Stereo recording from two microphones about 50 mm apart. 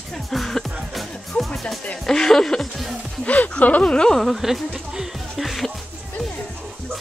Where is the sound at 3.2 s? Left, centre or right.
Left.